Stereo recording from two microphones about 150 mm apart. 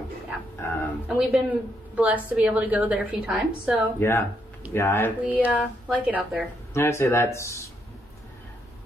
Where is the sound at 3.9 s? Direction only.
15° left (ahead or behind).